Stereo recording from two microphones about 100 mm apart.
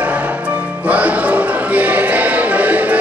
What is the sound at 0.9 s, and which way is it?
Music, 15° right (ahead or behind).